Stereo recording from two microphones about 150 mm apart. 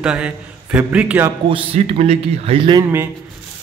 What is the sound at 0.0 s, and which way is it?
A man's voice, 5° right (ahead or behind).